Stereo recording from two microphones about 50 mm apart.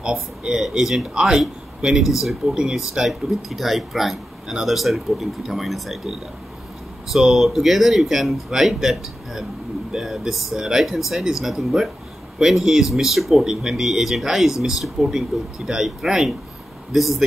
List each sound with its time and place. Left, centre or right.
0.0 s speech: centre
3.1 s speech: centre